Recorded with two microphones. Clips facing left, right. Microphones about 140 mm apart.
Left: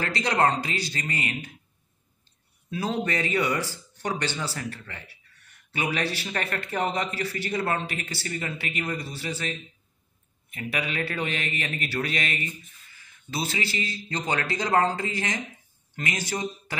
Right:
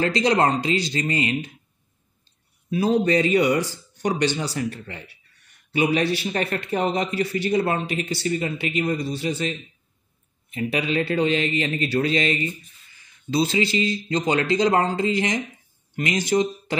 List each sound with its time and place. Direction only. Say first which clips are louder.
0.0 s speech: right 4 dB; 20° right (ahead or behind)
2.7 s speech: right 8 dB; 15° right (ahead or behind)